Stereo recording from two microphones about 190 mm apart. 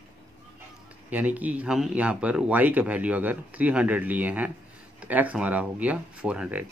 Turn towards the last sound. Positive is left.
turn(degrees=-5)  # may be behind; listen again after turning